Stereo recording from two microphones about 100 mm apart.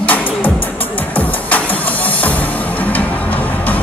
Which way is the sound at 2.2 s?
15° left (ahead or behind).